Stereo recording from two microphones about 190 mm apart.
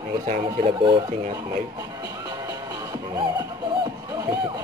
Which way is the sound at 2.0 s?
20° right (ahead or behind).